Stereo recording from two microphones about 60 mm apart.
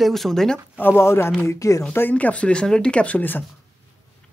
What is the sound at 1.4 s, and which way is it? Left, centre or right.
Speech, left.